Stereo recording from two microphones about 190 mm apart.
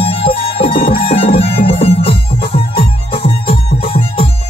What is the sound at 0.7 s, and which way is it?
Music, 50° left (ahead or behind).